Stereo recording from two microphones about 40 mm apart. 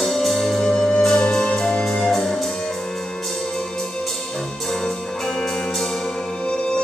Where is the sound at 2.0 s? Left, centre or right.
Centre.